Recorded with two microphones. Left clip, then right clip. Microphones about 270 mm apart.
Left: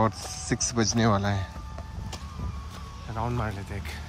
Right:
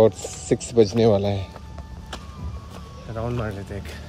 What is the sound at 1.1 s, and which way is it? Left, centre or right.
Speech, left.